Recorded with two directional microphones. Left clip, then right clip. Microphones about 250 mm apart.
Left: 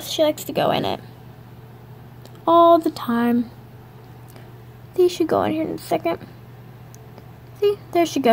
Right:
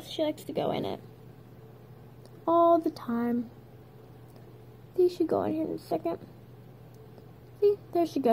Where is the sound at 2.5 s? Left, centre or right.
Left.